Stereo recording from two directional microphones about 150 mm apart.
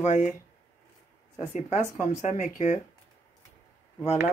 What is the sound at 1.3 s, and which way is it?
Speech, 55° left (ahead or behind).